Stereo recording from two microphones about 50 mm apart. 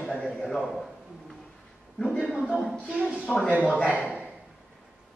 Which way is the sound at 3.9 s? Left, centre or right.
Right.